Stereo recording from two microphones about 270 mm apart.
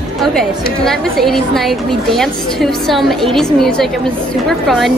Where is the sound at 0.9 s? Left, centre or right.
Centre.